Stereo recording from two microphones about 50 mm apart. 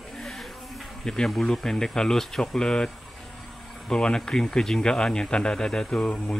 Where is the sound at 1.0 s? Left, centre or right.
Centre.